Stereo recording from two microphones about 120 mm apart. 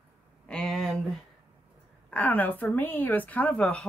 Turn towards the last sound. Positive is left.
turn(degrees=5)  # may be behind; listen again after turning